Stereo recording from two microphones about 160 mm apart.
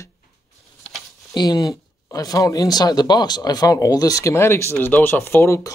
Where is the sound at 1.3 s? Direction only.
25° left (ahead or behind).